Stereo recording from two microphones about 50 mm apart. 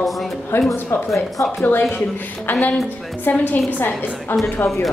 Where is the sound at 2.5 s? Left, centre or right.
Left.